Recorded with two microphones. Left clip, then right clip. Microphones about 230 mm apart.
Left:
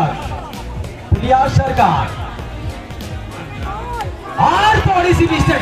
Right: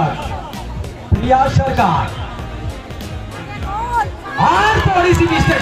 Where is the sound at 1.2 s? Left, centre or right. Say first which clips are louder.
Even; left.